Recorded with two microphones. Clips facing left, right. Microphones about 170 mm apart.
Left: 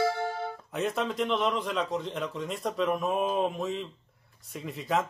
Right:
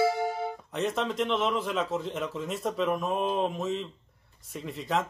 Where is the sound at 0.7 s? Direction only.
Centre (ahead or behind).